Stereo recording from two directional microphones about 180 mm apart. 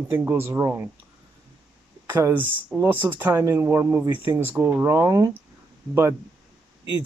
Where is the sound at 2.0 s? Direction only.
10° right (ahead or behind).